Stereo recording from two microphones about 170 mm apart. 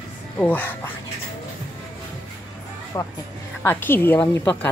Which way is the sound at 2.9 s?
15° left (ahead or behind).